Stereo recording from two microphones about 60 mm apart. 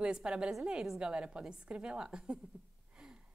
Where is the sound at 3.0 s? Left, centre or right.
Centre.